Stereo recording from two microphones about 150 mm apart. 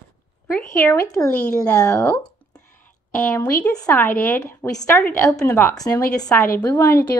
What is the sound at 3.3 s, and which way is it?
Speech, 10° left (ahead or behind).